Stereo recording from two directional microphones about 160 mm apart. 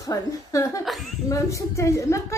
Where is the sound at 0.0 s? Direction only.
20° left (ahead or behind).